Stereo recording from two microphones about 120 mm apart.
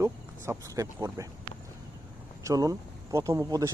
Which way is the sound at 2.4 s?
25° right (ahead or behind).